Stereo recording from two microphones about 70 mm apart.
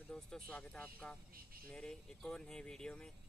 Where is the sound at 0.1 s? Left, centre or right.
Centre.